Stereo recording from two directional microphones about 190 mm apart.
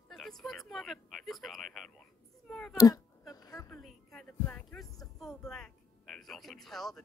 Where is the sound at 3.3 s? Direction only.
20° left (ahead or behind).